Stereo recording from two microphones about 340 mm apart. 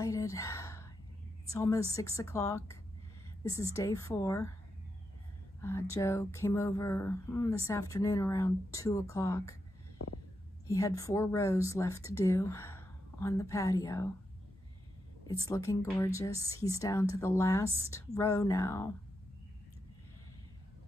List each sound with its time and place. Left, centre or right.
0.0 s a sound: centre
1.5 s speech: centre
5.6 s speech: centre
9.9 s a sound: left
10.7 s speech: centre
15.2 s speech: centre